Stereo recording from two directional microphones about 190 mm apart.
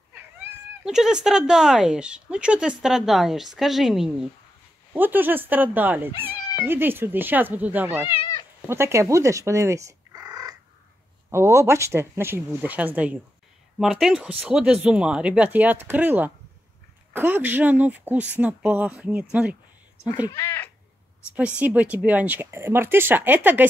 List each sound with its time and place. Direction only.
0.4 s a woman's voice: 5° right (ahead or behind)
8.1 s cat: 20° left (ahead or behind)
8.6 s a woman's voice: 15° right (ahead or behind)
20.1 s speech: 20° left (ahead or behind)
21.4 s speech: 5° right (ahead or behind)